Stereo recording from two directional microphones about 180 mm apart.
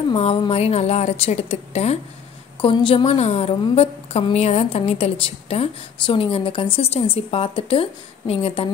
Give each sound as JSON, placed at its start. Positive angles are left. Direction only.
{"t": 0.1, "sound": "a woman's voice", "side_deg": 30}